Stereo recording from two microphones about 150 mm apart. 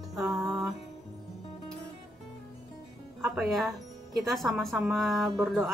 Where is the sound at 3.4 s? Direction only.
Centre (ahead or behind).